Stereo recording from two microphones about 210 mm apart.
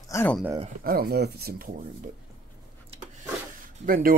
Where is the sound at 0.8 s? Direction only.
45° right (ahead or behind).